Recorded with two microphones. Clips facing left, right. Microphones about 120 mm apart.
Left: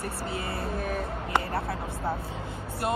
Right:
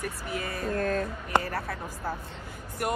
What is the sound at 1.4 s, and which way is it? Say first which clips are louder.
Speech: left 1 dB; 25° left (ahead or behind).